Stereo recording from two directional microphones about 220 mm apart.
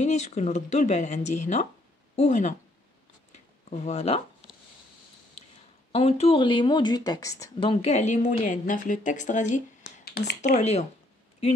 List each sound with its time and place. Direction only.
0.0 s a woman's voice: 30° left (ahead or behind)
3.7 s speech: 30° left (ahead or behind)
5.9 s speech: 30° left (ahead or behind)
7.8 s a woman's voice: 30° left (ahead or behind)
9.8 s a sound: 50° left (ahead or behind)
10.5 s a woman's voice: 30° left (ahead or behind)